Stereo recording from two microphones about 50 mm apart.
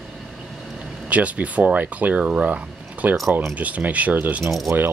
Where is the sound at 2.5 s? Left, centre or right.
Right.